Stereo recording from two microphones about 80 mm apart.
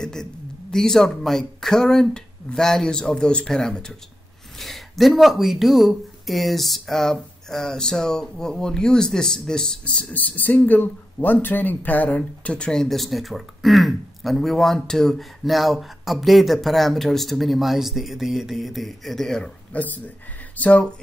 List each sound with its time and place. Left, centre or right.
0.0 s speech: centre
19.7 s speech: centre